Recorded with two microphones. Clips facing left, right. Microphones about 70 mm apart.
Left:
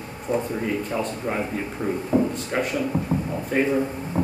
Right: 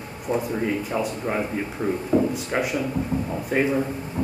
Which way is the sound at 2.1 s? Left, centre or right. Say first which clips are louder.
Even; centre.